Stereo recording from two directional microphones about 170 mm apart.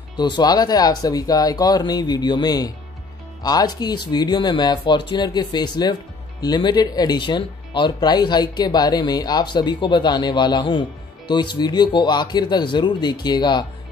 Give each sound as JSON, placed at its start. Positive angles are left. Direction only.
{"t": 0.2, "sound": "speech", "side_deg": 25}